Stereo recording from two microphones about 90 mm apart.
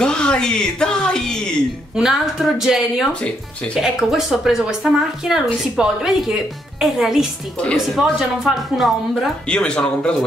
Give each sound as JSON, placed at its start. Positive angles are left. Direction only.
{"t": 0.0, "sound": "speech", "side_deg": 10}
{"t": 2.0, "sound": "speech", "side_deg": -5}
{"t": 3.2, "sound": "speech", "side_deg": 10}
{"t": 3.8, "sound": "speech", "side_deg": -5}
{"t": 9.5, "sound": "speech", "side_deg": 10}